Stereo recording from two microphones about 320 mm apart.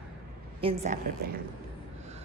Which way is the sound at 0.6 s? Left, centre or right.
Right.